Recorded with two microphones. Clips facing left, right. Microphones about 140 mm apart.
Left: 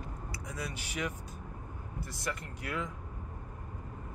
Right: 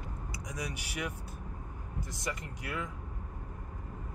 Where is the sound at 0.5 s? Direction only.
15° right (ahead or behind).